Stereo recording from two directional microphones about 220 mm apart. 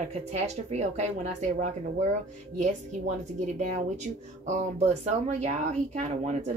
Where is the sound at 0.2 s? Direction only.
30° right (ahead or behind).